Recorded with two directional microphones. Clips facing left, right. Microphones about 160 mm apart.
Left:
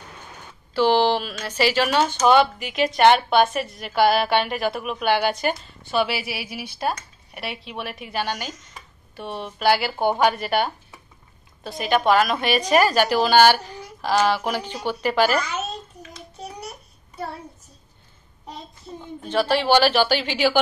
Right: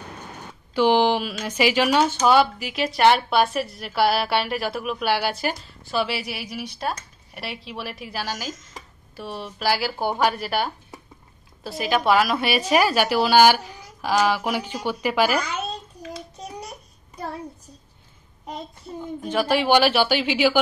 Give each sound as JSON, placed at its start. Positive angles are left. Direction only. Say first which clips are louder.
{"t": 0.7, "sound": "a woman's voice", "louder": "even", "side_deg": -10}
{"t": 19.2, "sound": "a woman's voice", "louder": "left 1 dB", "side_deg": -10}